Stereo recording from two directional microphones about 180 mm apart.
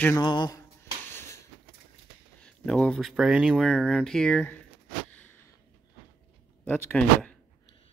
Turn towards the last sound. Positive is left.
turn(degrees=5)  # may be behind; listen again after turning